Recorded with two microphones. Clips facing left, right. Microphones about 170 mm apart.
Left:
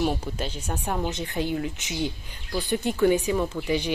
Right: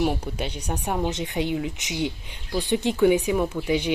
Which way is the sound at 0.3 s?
10° right (ahead or behind).